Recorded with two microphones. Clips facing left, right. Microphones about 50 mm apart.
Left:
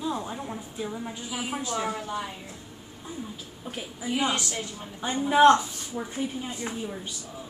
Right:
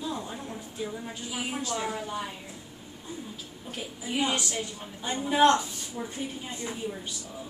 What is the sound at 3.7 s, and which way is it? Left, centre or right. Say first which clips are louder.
A man's voice: left 3 dB; centre.